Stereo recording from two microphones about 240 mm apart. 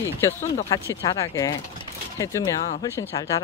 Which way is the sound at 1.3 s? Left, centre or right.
Centre.